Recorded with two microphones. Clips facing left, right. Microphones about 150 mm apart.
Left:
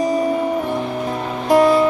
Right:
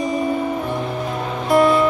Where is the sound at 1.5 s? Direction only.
35° left (ahead or behind).